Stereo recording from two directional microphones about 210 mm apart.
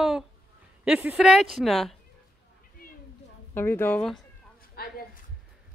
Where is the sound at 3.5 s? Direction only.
10° left (ahead or behind).